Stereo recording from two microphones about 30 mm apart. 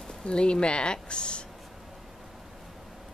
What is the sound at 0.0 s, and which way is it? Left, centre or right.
Speech, left.